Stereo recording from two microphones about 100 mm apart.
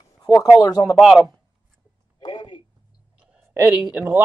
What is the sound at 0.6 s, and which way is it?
Speech, 40° left (ahead or behind).